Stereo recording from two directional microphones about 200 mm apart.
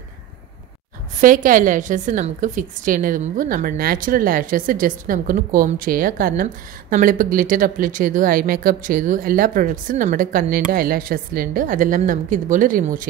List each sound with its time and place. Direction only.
1.2 s a woman's voice: 45° right (ahead or behind)